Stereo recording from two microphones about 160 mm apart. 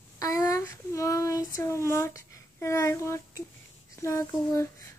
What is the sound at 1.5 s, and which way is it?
Speech, 15° left (ahead or behind).